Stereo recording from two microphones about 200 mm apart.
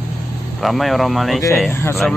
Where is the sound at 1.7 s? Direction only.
10° left (ahead or behind).